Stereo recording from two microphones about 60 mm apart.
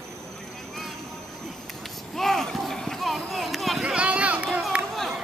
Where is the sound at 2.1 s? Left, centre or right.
Centre.